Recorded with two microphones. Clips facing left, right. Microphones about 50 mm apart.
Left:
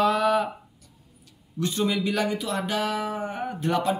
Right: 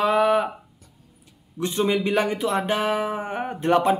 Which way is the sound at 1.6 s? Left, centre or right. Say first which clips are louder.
Right 3 dB; right.